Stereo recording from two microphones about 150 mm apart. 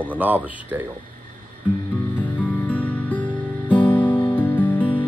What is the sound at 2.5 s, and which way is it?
Music, 10° left (ahead or behind).